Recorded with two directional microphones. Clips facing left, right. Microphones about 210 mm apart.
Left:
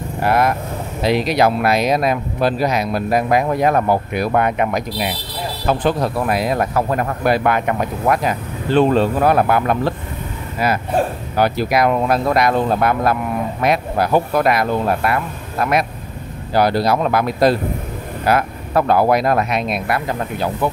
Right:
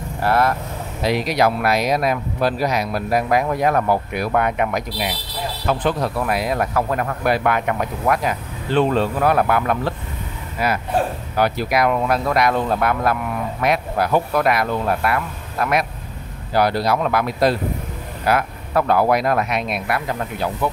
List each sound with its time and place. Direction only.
0.2 s speech: 15° left (ahead or behind)
11.3 s speech: 30° left (ahead or behind)